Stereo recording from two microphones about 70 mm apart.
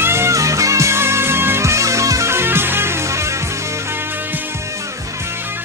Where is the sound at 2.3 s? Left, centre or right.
Right.